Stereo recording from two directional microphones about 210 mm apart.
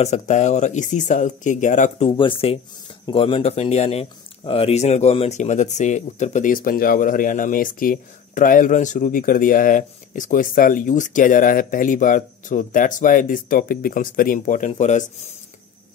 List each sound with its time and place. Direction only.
0.0 s speech: 35° left (ahead or behind)